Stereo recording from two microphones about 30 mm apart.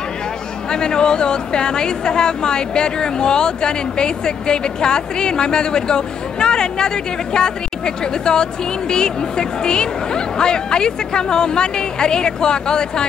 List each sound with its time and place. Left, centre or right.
0.7 s a woman's voice: left